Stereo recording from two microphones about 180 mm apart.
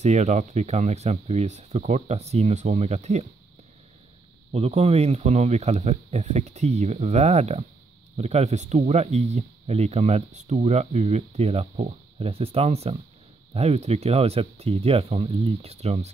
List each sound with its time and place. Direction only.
0.0 s speech: 40° right (ahead or behind)
4.5 s speech: 35° right (ahead or behind)